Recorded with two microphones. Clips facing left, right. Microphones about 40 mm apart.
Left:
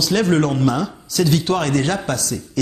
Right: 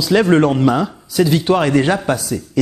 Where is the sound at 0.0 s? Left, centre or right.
Centre.